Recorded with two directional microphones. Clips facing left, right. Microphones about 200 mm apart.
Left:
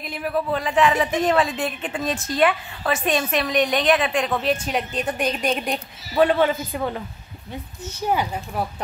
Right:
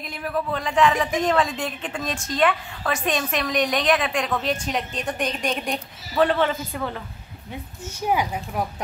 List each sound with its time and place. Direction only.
0.2 s a woman's voice: 5° left (ahead or behind)
7.8 s speech: 10° right (ahead or behind)